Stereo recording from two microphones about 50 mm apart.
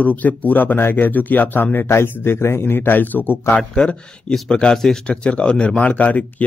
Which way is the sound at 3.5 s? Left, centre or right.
Centre.